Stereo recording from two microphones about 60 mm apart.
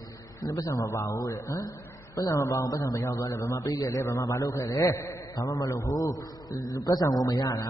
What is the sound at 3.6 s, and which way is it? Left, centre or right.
Speech, left.